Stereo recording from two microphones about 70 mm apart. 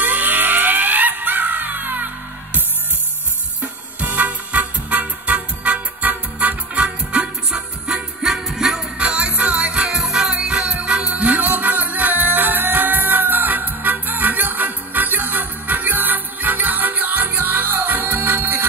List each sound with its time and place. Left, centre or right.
0.0 s music: right
3.6 s music: right; by 8.8 s centre
8.9 s music: centre